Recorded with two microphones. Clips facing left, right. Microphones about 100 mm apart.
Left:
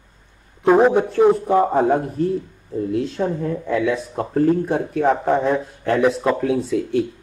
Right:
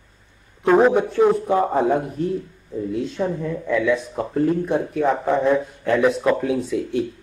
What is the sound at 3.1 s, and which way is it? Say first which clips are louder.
Speech: left 2 dB; 35° left (ahead or behind).